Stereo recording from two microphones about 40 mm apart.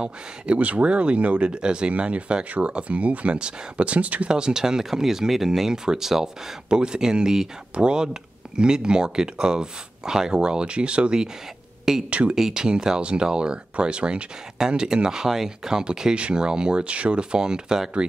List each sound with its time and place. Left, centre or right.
0.0 s speech: right
4.3 s speech: centre
6.7 s speech: right
12.4 s speech: centre